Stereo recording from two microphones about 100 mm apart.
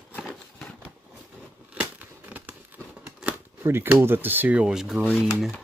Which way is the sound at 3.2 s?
20° right (ahead or behind).